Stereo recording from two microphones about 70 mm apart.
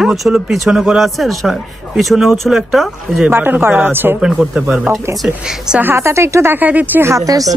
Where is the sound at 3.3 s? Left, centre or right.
Right.